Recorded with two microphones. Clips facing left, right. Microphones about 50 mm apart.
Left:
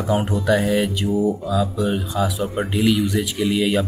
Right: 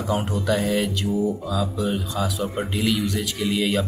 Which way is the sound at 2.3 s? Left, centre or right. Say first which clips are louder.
Left 3 dB; centre.